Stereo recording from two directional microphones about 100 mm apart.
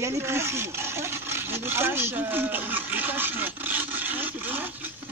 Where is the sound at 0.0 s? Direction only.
25° right (ahead or behind).